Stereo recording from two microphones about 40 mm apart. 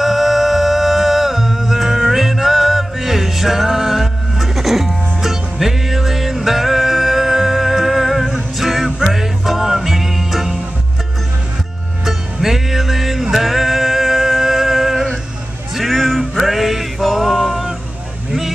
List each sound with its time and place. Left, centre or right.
0.0 s music: centre
12.0 s music: centre
15.8 s music: centre